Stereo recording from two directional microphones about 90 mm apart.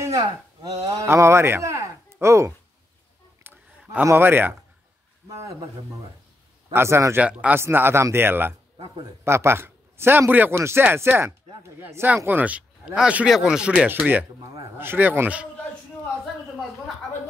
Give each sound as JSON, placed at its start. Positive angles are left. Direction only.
{"t": 0.0, "sound": "speech", "side_deg": -40}
{"t": 1.0, "sound": "speech", "side_deg": -30}
{"t": 3.4, "sound": "a sound", "side_deg": -25}
{"t": 4.0, "sound": "a man's voice", "side_deg": -25}
{"t": 5.3, "sound": "speech", "side_deg": -35}
{"t": 6.7, "sound": "a man's voice", "side_deg": -30}
{"t": 7.2, "sound": "a man's voice", "side_deg": -15}
{"t": 8.7, "sound": "a man's voice", "side_deg": -55}
{"t": 9.2, "sound": "a man's voice", "side_deg": -30}
{"t": 13.8, "sound": "a man's voice", "side_deg": -20}